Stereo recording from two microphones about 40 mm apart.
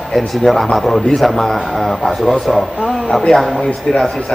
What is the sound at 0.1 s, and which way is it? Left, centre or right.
A man's voice, centre.